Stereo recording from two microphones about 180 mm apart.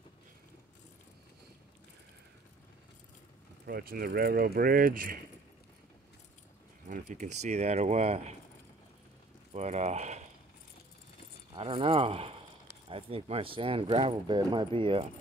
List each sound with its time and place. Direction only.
3.6 s speech: 55° right (ahead or behind)
6.9 s speech: 40° right (ahead or behind)
9.5 s speech: 40° right (ahead or behind)
11.5 s speech: 30° right (ahead or behind)